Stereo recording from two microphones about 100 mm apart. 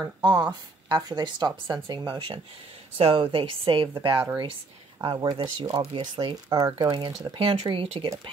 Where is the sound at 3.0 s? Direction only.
65° right (ahead or behind).